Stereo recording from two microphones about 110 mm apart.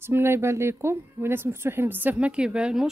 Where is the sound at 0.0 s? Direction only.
20° right (ahead or behind).